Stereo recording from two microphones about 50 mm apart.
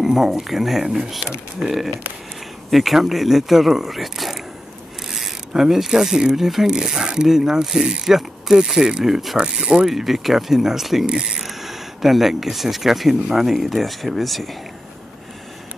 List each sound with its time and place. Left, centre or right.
0.0 s speech: centre
5.5 s speech: centre
9.4 s speech: centre
11.1 s speech: centre
11.4 s speech: centre